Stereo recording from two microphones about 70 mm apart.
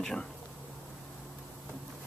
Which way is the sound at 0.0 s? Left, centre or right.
Centre.